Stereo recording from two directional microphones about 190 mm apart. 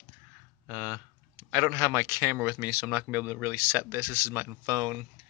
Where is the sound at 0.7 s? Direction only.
10° right (ahead or behind).